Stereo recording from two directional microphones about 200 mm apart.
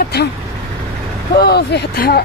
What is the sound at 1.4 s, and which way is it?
Speech, 55° left (ahead or behind).